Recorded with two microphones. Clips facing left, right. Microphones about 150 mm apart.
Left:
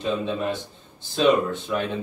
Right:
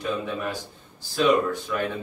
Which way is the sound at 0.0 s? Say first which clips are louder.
Left 3 dB; 20° left (ahead or behind).